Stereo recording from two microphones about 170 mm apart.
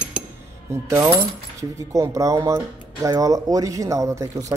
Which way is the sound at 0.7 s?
15° right (ahead or behind).